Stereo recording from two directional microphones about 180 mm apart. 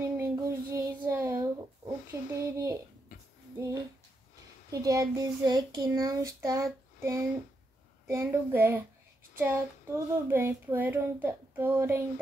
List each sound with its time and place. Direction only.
0.0 s a sound: 15° right (ahead or behind)
2.5 s child singing: 15° right (ahead or behind)
4.6 s speech: 20° right (ahead or behind)
8.1 s child singing: 15° right (ahead or behind)